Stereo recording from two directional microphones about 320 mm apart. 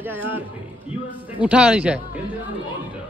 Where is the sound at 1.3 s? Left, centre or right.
Centre.